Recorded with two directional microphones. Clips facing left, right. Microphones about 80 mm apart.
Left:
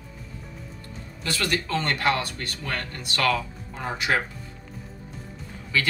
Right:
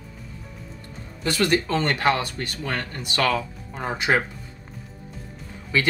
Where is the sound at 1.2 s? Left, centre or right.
Right.